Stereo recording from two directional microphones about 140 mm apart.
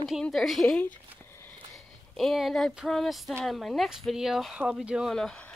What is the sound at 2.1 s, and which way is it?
Speech, centre (ahead or behind).